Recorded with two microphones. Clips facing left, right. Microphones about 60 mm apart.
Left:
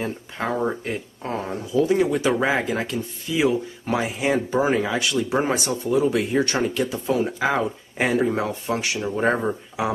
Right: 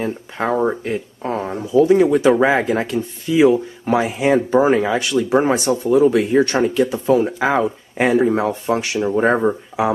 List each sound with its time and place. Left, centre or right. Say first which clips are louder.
0.0 s speech: right 5 dB; right
0.8 s speech: right 6 dB; centre